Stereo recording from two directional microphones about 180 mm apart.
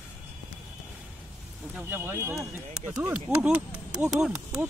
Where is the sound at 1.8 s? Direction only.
10° right (ahead or behind).